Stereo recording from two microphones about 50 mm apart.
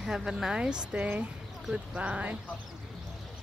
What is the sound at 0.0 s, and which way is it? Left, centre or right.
Speech, centre.